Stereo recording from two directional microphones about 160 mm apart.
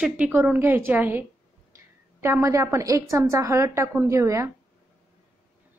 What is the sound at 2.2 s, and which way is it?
A woman's voice, 15° right (ahead or behind).